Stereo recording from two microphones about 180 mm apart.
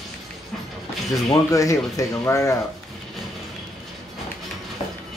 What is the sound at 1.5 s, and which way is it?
Speech, 15° left (ahead or behind).